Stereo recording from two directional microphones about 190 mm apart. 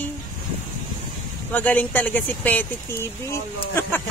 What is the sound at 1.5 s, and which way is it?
Speech, 10° left (ahead or behind).